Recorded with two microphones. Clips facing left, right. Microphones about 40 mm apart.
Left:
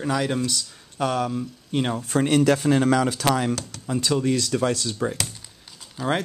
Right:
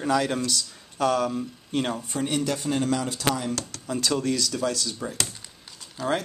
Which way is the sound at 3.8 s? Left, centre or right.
Centre.